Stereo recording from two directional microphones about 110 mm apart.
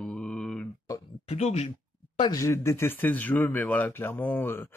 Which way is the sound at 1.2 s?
75° left (ahead or behind).